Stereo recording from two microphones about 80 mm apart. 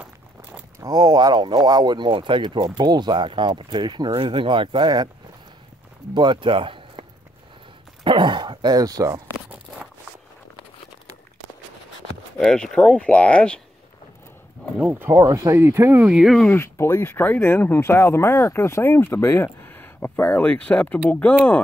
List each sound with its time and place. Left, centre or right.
0.0 s a sound: centre
0.8 s speech: right
6.1 s speech: right
12.4 s speech: centre
14.8 s speech: right
15.1 s speech: right
15.5 s speech: right
16.0 s speech: centre
16.4 s speech: left